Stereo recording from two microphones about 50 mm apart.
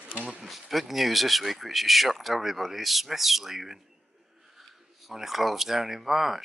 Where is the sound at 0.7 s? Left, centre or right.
Centre.